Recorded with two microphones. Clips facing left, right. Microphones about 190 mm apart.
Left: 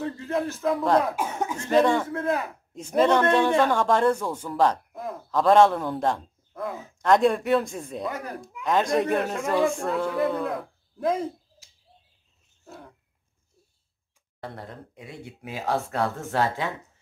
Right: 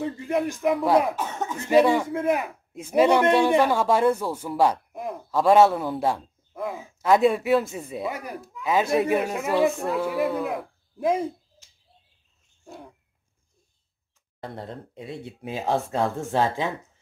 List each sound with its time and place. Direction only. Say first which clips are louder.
0.0 s a man's voice: right 2 dB; 15° right (ahead or behind)
1.1 s speech: left 1 dB; 10° left (ahead or behind)
1.6 s a man's voice: right 2 dB; 10° right (ahead or behind)
14.4 s speech: right 3 dB; 25° right (ahead or behind)